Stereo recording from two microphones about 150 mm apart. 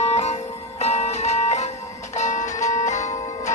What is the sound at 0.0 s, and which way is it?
Music, 50° left (ahead or behind).